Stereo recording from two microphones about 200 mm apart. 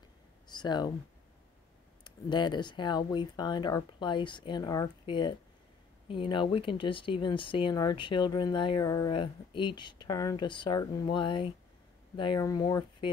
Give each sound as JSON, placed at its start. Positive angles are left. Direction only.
{"t": 0.5, "sound": "speech", "side_deg": 20}
{"t": 2.0, "sound": "speech", "side_deg": 20}